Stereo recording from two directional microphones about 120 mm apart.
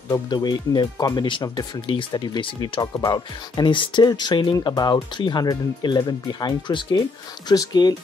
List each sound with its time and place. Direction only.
0.1 s speech: 35° left (ahead or behind)